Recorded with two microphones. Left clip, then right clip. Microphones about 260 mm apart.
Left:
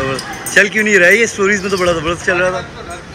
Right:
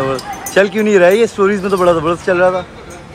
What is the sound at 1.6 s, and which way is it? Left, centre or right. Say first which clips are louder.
Speech: right 3 dB; centre.